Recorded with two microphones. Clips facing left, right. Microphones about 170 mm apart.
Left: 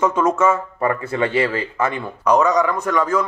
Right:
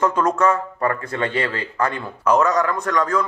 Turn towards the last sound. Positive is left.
turn(degrees=5)  # may be behind; listen again after turning